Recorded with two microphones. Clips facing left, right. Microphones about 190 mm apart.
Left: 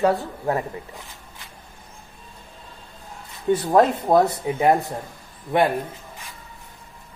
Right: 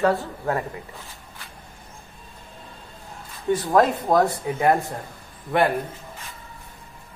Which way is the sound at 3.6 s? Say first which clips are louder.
Left 1 dB; 20° left (ahead or behind).